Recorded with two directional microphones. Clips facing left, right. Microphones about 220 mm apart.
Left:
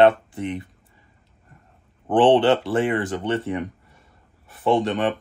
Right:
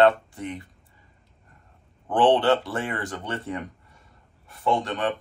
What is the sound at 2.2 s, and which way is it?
Speech, 20° left (ahead or behind).